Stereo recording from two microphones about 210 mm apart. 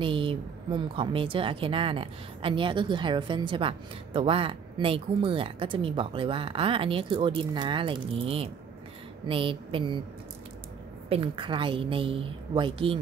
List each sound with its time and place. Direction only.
0.0 s speech: 25° right (ahead or behind)
11.1 s speech: 25° right (ahead or behind)